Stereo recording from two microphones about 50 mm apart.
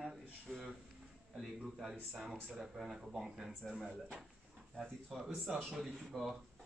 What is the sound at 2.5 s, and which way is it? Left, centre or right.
Speech, centre.